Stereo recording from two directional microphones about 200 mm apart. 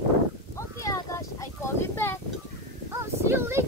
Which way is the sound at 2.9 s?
10° right (ahead or behind).